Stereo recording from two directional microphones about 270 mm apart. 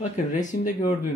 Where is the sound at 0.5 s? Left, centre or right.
Left.